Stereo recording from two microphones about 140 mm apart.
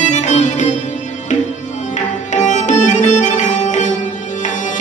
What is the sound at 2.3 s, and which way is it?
Music, 60° left (ahead or behind).